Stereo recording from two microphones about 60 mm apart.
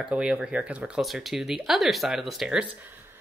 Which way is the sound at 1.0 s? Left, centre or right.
Centre.